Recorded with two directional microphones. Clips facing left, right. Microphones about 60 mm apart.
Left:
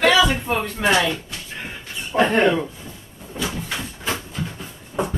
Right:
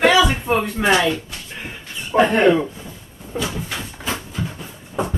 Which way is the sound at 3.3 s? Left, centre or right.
Centre.